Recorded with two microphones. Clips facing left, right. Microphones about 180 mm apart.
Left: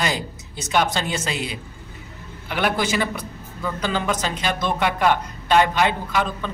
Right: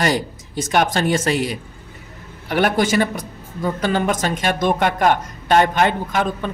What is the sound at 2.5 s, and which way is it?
A woman's voice, 50° right (ahead or behind).